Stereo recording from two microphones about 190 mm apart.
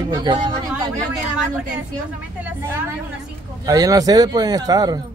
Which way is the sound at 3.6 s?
20° right (ahead or behind).